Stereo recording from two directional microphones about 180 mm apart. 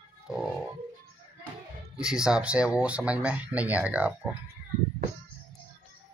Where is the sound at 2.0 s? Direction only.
5° right (ahead or behind).